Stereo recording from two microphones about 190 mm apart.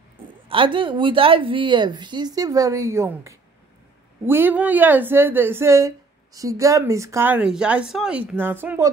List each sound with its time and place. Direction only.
0.5 s a woman's voice: 25° right (ahead or behind)